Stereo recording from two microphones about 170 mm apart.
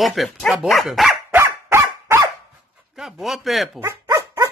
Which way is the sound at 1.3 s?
15° right (ahead or behind).